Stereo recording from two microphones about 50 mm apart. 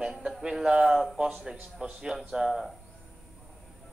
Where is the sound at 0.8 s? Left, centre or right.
Centre.